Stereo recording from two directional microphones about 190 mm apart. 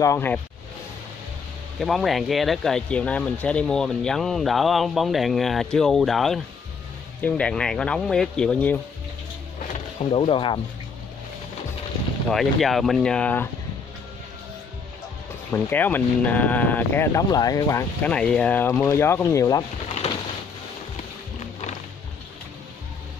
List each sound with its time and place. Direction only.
0.0 s speech: 15° left (ahead or behind)
1.8 s speech: centre (ahead or behind)
10.1 s speech: 25° left (ahead or behind)
12.3 s speech: centre (ahead or behind)
15.5 s speech: 10° left (ahead or behind)
20.0 s a sound: 35° left (ahead or behind)